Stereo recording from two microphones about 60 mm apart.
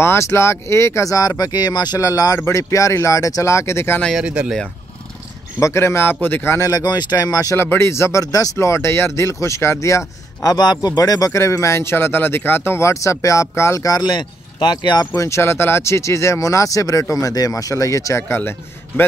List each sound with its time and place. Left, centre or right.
0.0 s speech: left
1.4 s speech: left
2.4 s speech: left
4.2 s speech: centre
5.6 s speech: left
6.6 s speech: left
7.5 s speech: left
11.3 s speech: left
15.1 s speech: left
17.1 s speech: left
18.3 s speech: left